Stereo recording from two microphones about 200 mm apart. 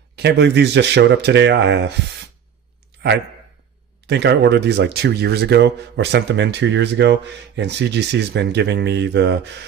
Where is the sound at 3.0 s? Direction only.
60° right (ahead or behind).